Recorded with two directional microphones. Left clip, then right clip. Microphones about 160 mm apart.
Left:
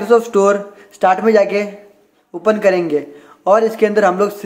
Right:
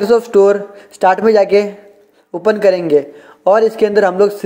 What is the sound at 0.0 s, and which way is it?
A woman's voice, 30° right (ahead or behind).